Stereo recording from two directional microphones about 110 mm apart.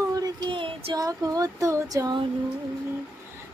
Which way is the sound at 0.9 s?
35° right (ahead or behind).